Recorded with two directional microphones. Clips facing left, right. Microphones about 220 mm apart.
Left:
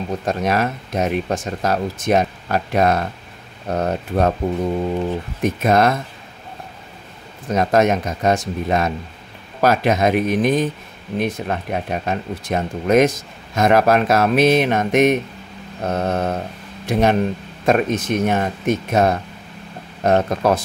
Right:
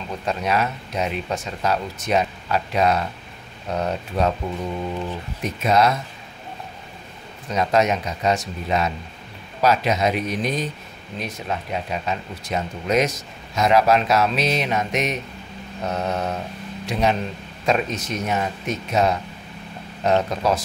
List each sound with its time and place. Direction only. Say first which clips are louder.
0.2 s speech: left 2 dB; 45° left (ahead or behind)
5.4 s speech: left 3 dB; 50° left (ahead or behind)
7.4 s speech: left 4 dB; 50° left (ahead or behind)